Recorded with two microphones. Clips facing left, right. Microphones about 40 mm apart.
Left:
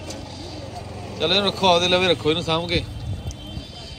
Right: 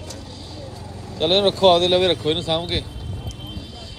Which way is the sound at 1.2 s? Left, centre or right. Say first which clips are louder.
Right 4 dB; centre.